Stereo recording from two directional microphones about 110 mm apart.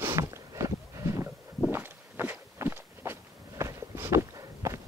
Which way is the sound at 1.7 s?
20° right (ahead or behind).